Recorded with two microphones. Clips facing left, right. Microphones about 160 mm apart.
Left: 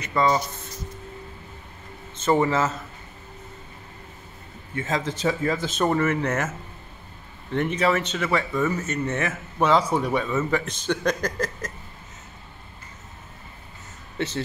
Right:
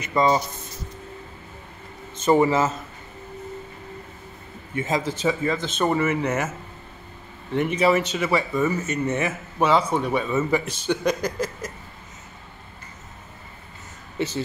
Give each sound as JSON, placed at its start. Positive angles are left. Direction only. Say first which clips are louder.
{"t": 0.0, "sound": "speech", "louder": "right 2 dB", "side_deg": -15}
{"t": 2.1, "sound": "a man's voice", "louder": "right 3 dB", "side_deg": -15}
{"t": 4.7, "sound": "speech", "louder": "right 2 dB", "side_deg": -15}
{"t": 5.0, "sound": "speech", "louder": "right 1 dB", "side_deg": -5}
{"t": 7.5, "sound": "speech", "louder": "right 2 dB", "side_deg": -10}
{"t": 14.1, "sound": "speech", "louder": "right 2 dB", "side_deg": -5}